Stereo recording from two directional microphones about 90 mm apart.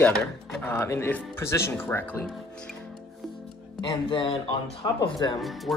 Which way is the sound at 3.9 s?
70° left (ahead or behind).